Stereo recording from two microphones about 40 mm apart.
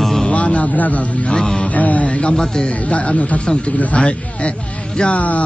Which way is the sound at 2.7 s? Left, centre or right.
Left.